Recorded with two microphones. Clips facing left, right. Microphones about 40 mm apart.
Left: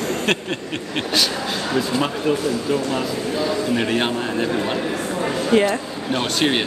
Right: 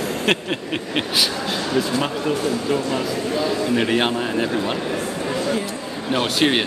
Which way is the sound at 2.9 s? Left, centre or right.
Centre.